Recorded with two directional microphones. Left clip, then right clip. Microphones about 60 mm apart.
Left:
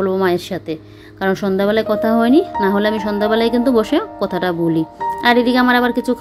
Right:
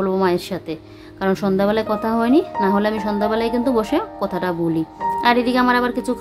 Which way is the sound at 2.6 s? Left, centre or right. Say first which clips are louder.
Left 2 dB; left.